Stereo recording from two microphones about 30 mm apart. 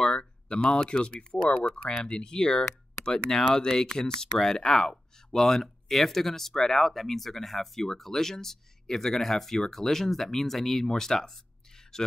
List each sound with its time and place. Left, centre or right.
0.2 s speech: left; by 12.1 s centre